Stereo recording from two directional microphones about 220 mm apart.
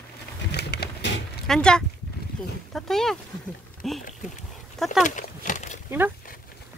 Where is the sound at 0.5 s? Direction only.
50° left (ahead or behind).